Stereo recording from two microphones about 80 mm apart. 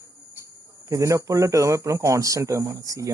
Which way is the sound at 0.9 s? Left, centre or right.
Right.